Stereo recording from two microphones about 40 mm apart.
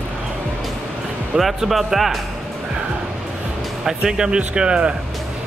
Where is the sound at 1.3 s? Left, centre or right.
Centre.